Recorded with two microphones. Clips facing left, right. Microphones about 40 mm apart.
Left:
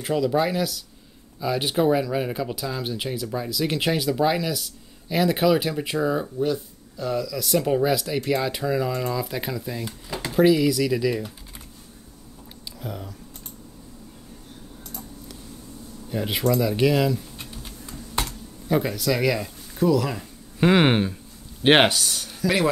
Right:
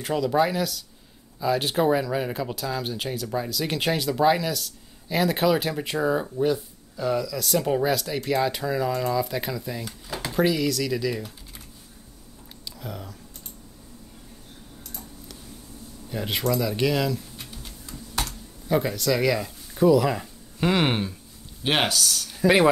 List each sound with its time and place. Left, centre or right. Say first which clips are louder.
0.0 s speech: even; centre
12.8 s speech: left 2 dB; centre
16.1 s speech: left 3 dB; centre
20.6 s speech: left 4 dB; centre
21.6 s speech: left 6 dB; left
22.4 s speech: right 4 dB; right